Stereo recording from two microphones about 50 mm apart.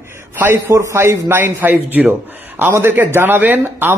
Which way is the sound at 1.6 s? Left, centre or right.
Right.